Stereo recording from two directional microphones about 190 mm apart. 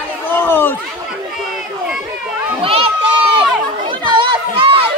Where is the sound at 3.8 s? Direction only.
25° right (ahead or behind).